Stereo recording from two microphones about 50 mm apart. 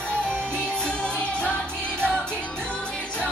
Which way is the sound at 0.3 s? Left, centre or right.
Right.